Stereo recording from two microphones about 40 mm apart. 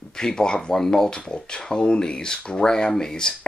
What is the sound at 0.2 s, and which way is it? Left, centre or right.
Speech, centre.